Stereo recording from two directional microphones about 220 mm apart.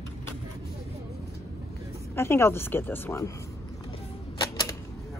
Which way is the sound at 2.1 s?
10° left (ahead or behind).